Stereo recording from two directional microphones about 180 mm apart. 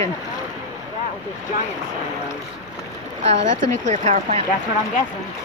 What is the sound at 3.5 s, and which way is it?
Speech, 45° right (ahead or behind).